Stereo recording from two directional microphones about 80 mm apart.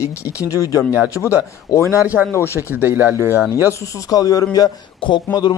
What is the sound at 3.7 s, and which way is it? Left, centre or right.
Speech, left.